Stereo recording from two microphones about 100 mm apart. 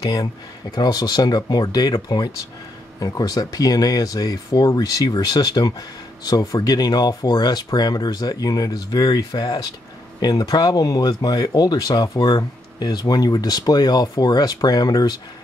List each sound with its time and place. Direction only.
0.0 s speech: 35° left (ahead or behind)